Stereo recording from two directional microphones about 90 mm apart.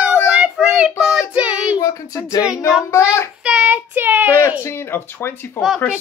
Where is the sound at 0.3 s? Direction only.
10° right (ahead or behind).